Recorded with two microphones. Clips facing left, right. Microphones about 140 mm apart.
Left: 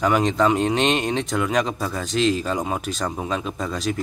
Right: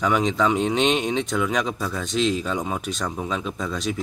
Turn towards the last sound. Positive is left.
turn(degrees=0)  # may be behind; listen again after turning